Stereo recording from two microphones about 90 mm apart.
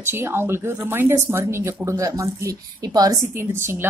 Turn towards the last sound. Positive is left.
turn(degrees=-25)  # may be behind; listen again after turning